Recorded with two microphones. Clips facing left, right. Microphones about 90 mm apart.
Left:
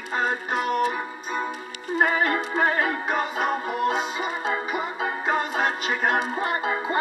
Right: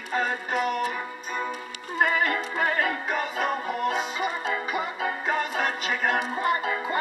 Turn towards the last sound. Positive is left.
turn(degrees=30)  # may be behind; listen again after turning